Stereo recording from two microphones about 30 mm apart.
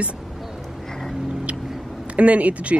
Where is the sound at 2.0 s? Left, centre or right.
Right.